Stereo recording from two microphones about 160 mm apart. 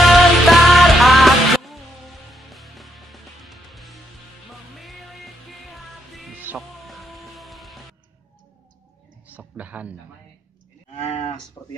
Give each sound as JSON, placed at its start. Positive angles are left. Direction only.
{"t": 0.1, "sound": "music", "side_deg": 0}
{"t": 6.9, "sound": "music", "side_deg": 0}
{"t": 9.3, "sound": "a sound", "side_deg": -10}
{"t": 11.0, "sound": "cattle", "side_deg": 40}
{"t": 11.6, "sound": "speech", "side_deg": 20}